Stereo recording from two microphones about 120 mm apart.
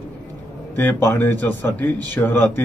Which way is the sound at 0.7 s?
15° left (ahead or behind).